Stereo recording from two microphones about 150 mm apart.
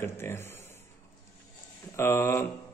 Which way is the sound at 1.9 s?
15° left (ahead or behind).